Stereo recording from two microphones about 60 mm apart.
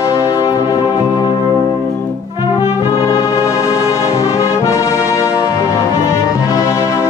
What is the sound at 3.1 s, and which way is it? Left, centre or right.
Brass instrument, left.